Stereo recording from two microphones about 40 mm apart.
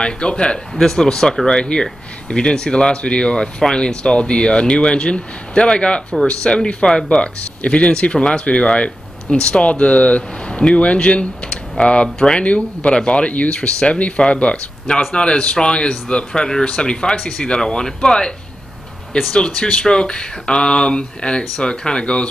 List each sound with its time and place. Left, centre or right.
0.0 s speech: left
0.7 s speech: centre
7.1 s speech: left
19.3 s speech: left